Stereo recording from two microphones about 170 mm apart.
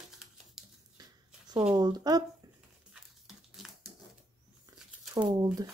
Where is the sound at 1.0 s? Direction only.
20° right (ahead or behind).